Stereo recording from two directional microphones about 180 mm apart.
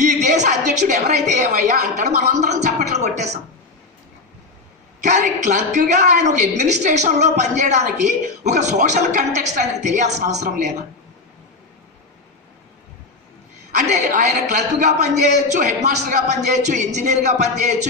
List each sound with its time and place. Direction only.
0.0 s a sound: 40° right (ahead or behind)
5.2 s a man's voice: 40° right (ahead or behind)
13.7 s a man's voice: 45° right (ahead or behind)